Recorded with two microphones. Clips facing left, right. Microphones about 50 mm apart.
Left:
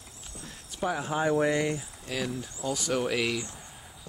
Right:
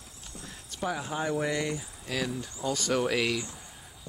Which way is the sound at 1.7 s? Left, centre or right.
Centre.